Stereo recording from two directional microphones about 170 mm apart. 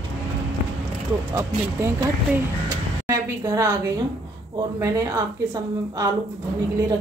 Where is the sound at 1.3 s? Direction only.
15° right (ahead or behind).